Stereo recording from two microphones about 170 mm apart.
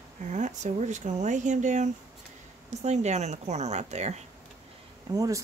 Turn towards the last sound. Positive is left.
turn(degrees=-20)  # may be behind; listen again after turning